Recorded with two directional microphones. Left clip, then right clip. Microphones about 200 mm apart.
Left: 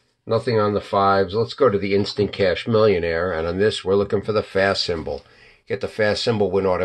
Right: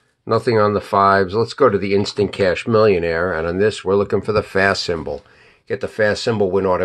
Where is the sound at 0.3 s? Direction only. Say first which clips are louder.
Right 4 dB; 35° right (ahead or behind).